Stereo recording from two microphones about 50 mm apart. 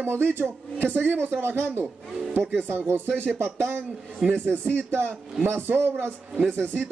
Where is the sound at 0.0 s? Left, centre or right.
Right.